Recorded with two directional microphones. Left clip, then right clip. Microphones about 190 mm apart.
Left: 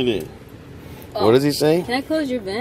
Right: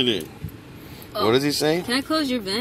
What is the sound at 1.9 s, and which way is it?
Speech, 50° right (ahead or behind).